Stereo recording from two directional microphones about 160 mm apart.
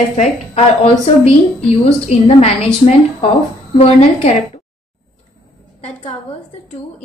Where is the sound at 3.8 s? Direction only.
45° left (ahead or behind).